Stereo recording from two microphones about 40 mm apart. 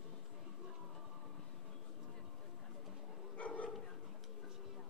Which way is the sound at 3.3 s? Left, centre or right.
Left.